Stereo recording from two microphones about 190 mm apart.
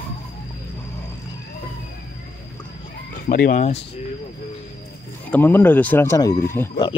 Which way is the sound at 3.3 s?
45° left (ahead or behind).